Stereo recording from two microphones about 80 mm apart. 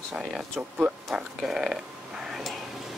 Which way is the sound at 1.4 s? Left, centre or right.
Centre.